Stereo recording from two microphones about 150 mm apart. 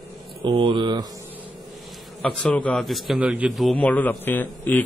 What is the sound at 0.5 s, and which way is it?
Speech, 35° right (ahead or behind).